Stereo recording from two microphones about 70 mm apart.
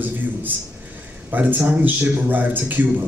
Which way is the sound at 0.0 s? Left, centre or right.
Right.